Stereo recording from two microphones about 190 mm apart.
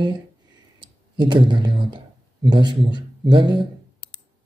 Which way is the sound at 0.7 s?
25° right (ahead or behind).